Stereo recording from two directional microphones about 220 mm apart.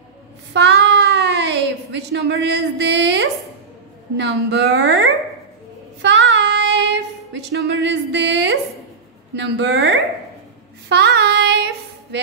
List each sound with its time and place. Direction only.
0.5 s a sound: 50° right (ahead or behind)
4.2 s a woman's voice: 50° right (ahead or behind)
6.0 s child singing: 55° right (ahead or behind)
9.3 s a woman's voice: 55° right (ahead or behind)
10.9 s child singing: 50° right (ahead or behind)